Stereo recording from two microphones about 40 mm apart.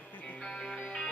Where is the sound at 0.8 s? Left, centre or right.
Left.